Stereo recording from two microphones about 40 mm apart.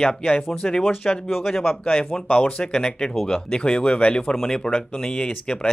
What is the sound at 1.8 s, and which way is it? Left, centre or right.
Speech, left.